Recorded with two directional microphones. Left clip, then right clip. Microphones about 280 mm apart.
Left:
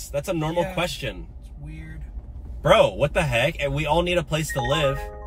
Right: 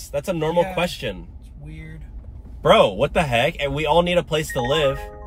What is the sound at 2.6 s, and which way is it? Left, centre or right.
A man's voice, centre.